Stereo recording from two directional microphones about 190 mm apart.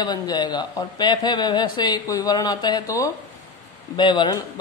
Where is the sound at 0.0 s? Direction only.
20° left (ahead or behind).